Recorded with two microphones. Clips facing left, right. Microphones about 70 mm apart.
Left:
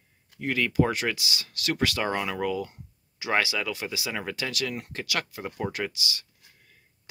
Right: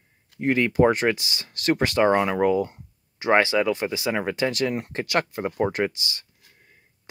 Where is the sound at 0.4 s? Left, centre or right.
Right.